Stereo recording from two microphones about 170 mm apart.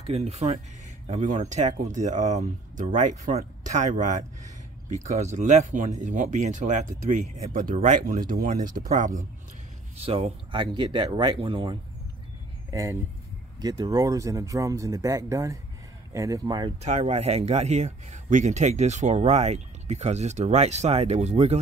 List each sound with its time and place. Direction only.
0.0 s speech: 40° right (ahead or behind)
9.9 s speech: 35° right (ahead or behind)
13.6 s speech: 25° right (ahead or behind)
16.8 s speech: 40° right (ahead or behind)